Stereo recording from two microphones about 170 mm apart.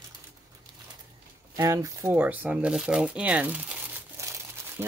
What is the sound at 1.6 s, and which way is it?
Speech, 20° right (ahead or behind).